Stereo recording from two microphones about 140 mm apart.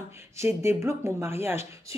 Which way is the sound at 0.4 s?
20° right (ahead or behind).